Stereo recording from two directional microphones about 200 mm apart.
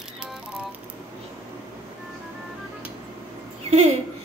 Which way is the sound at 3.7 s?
30° right (ahead or behind).